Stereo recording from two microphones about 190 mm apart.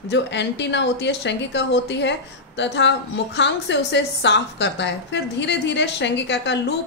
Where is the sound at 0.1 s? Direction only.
65° left (ahead or behind).